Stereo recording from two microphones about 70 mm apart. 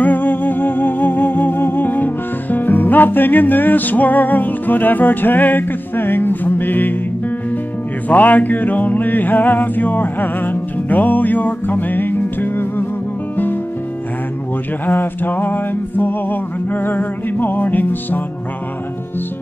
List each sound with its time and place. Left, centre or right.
0.0 s music: left
8.1 s a sound: left
14.9 s music: left